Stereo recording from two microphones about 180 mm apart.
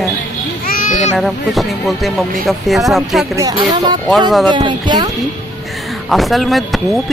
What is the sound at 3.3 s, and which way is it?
Speech, 25° right (ahead or behind).